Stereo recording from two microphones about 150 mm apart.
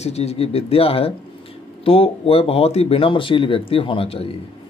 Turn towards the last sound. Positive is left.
turn(degrees=40)  # may be behind; listen again after turning